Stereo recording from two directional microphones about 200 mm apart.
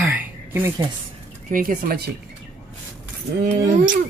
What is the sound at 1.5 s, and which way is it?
Speech, 45° right (ahead or behind).